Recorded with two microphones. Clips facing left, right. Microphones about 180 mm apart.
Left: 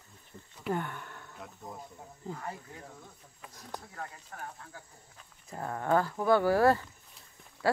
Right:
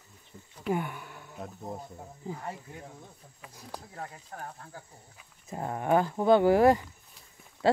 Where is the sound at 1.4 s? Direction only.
35° right (ahead or behind).